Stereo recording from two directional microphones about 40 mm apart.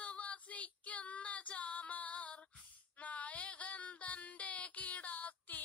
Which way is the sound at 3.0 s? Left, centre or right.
Left.